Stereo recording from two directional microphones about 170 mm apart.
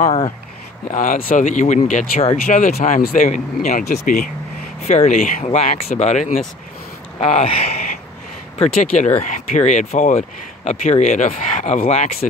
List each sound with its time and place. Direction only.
0.8 s speech: 50° left (ahead or behind)
3.8 s speech: 60° left (ahead or behind)
4.8 s speech: 40° left (ahead or behind)